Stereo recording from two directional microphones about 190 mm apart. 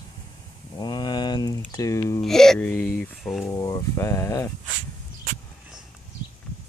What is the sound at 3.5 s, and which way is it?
Speech, 15° left (ahead or behind).